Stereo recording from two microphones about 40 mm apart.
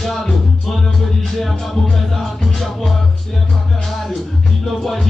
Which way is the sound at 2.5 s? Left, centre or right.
Centre.